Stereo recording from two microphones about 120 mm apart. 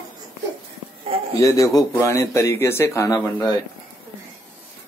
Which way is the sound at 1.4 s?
30° left (ahead or behind).